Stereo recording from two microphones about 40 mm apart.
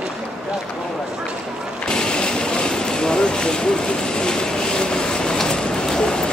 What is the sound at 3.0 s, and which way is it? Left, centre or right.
Vehicle, centre.